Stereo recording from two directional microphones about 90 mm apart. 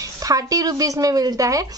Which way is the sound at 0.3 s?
40° right (ahead or behind).